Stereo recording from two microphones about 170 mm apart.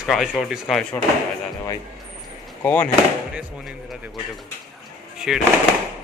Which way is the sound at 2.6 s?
10° left (ahead or behind).